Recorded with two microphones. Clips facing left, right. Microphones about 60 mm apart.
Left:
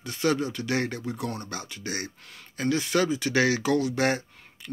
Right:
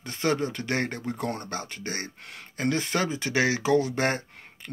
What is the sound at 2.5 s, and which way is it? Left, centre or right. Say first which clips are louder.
Speech: left 2 dB; right.